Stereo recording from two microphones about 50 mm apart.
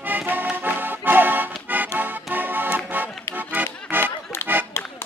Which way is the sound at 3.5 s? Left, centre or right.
Right.